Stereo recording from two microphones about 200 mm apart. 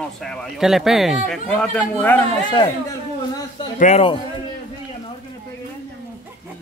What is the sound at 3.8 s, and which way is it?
Speech, 30° left (ahead or behind).